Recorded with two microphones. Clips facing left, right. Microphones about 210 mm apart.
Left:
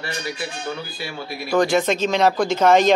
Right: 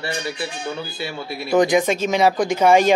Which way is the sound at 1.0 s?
20° right (ahead or behind).